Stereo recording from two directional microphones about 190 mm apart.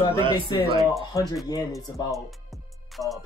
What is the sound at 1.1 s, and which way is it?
A man's voice, 20° left (ahead or behind).